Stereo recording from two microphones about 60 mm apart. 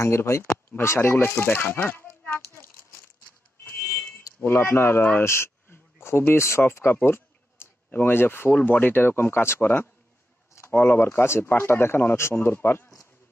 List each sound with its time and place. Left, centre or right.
0.0 s a child's voice: left
4.4 s speech: left
5.2 s a sound: left
6.6 s speech: left